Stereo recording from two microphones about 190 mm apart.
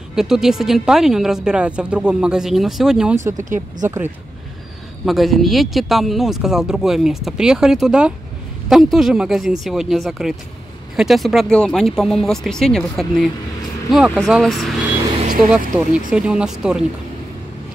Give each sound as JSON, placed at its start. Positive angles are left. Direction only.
{"t": 0.1, "sound": "speech", "side_deg": 0}
{"t": 3.3, "sound": "speech", "side_deg": -40}
{"t": 5.0, "sound": "speech", "side_deg": 0}
{"t": 16.1, "sound": "speech", "side_deg": -5}